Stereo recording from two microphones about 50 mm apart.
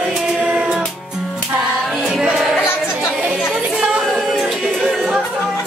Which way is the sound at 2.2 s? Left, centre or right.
Centre.